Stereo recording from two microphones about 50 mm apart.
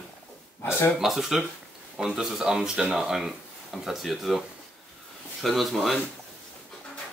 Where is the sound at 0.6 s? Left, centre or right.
Left.